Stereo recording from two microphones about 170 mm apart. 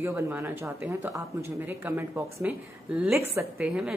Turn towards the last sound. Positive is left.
turn(degrees=-5)  # may be behind; listen again after turning